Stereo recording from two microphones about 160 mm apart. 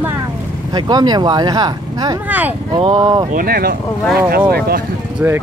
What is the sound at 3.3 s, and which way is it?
Speech, 65° right (ahead or behind).